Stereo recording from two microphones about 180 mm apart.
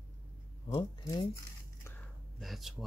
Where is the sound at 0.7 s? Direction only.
20° left (ahead or behind).